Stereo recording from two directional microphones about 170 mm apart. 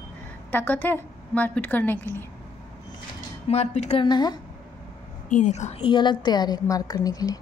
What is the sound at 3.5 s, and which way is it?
Speech, 40° left (ahead or behind).